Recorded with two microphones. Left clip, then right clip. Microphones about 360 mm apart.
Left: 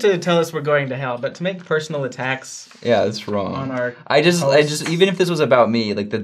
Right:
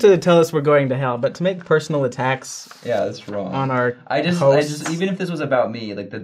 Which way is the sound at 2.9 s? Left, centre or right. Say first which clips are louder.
Left 4 dB; left.